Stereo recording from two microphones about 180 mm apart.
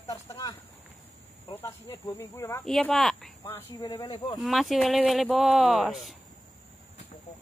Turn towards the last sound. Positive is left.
turn(degrees=0)  # may be behind; listen again after turning